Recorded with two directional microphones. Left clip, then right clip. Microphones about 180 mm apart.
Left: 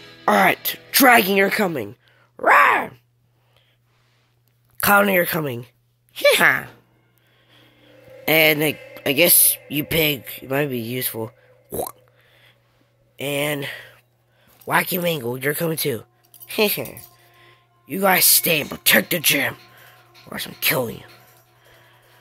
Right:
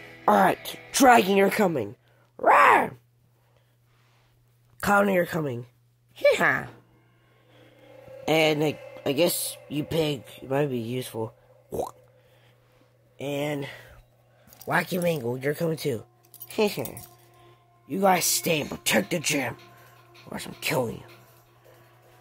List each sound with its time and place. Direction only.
0.2 s speech: 5° left (ahead or behind)
2.6 s speech: 20° right (ahead or behind)
4.7 s speech: 10° left (ahead or behind)
8.3 s speech: 5° left (ahead or behind)
19.5 s music: 10° left (ahead or behind)
20.3 s speech: centre (ahead or behind)